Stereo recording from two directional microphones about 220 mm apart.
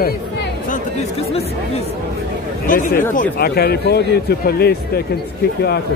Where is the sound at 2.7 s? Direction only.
40° left (ahead or behind).